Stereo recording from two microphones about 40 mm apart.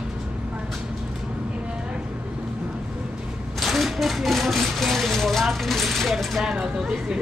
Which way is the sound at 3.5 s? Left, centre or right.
Centre.